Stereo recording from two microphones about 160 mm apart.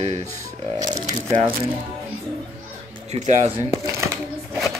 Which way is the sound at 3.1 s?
40° right (ahead or behind).